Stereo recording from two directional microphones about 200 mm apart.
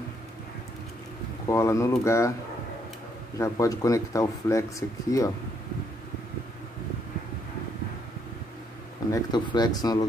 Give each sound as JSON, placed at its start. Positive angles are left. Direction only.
{"t": 1.5, "sound": "speech", "side_deg": 15}
{"t": 3.3, "sound": "speech", "side_deg": 15}
{"t": 9.1, "sound": "speech", "side_deg": 20}